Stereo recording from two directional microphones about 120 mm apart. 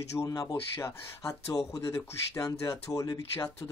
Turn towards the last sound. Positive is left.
turn(degrees=30)  # may be behind; listen again after turning